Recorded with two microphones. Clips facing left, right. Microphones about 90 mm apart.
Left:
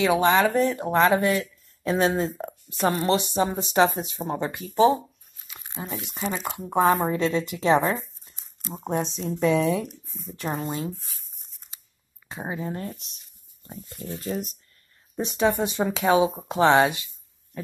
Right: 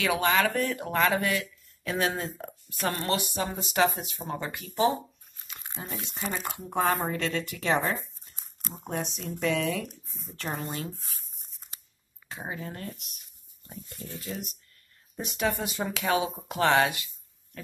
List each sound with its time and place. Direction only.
0.0 s speech: 25° left (ahead or behind)
5.8 s speech: 5° left (ahead or behind)
6.6 s speech: 20° left (ahead or behind)
12.3 s speech: 20° left (ahead or behind)
15.1 s speech: 25° left (ahead or behind)